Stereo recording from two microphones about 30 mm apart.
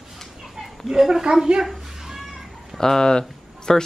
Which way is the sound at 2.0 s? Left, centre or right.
Centre.